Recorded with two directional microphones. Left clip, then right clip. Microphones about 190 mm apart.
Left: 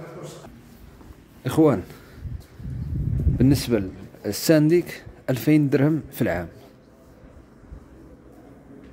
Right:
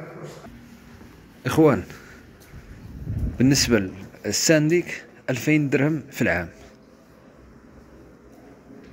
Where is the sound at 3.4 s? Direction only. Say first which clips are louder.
Right 2 dB; 10° left (ahead or behind).